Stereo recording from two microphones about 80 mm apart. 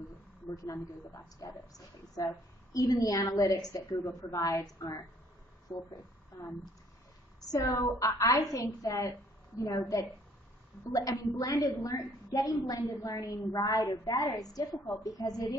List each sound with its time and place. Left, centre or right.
1.4 s a woman's voice: left
10.8 s a woman's voice: left